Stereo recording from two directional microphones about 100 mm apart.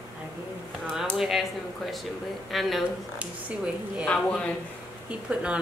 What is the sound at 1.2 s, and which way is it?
Speech, centre (ahead or behind).